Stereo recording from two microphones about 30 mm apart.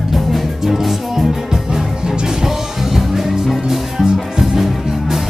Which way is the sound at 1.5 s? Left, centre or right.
Centre.